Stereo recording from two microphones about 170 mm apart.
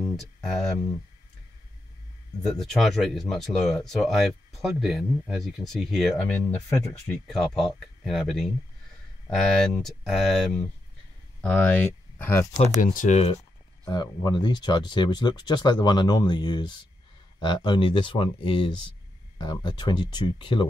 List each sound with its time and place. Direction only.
0.1 s speech: centre (ahead or behind)
2.4 s speech: 5° left (ahead or behind)
7.2 s speech: centre (ahead or behind)
12.8 s speech: 50° left (ahead or behind)
13.8 s speech: 25° left (ahead or behind)